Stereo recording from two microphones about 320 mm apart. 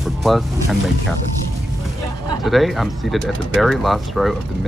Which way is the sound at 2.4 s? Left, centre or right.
Centre.